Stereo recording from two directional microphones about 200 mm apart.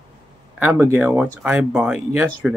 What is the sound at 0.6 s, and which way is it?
Speech, 10° right (ahead or behind).